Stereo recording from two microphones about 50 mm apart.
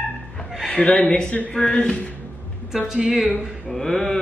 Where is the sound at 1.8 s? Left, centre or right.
Left.